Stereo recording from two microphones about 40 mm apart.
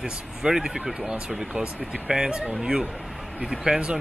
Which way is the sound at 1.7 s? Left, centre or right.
Right.